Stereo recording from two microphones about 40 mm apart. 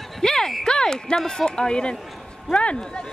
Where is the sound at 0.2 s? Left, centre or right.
Centre.